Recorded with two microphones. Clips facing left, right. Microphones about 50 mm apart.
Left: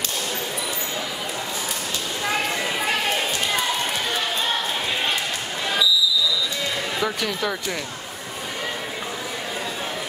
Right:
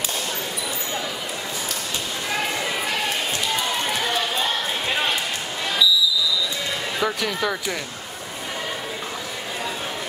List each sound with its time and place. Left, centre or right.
7.0 s speech: centre